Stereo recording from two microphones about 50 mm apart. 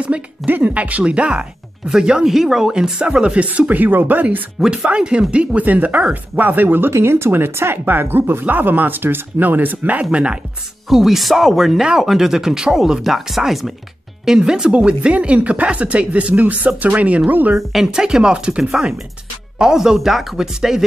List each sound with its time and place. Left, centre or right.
0.5 s speech: right
4.6 s speech: centre; by 6.9 s right
6.9 s speech: right
10.1 s speech: right
10.9 s speech: centre; by 17.6 s right
17.6 s speech: centre